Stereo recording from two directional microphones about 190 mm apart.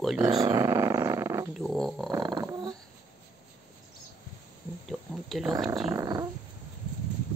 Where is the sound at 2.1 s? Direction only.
20° right (ahead or behind).